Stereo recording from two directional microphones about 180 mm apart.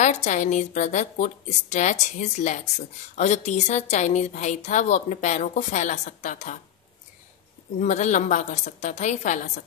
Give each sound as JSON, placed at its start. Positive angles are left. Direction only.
{"t": 0.0, "sound": "a woman's voice", "side_deg": 40}
{"t": 7.8, "sound": "a woman's voice", "side_deg": 40}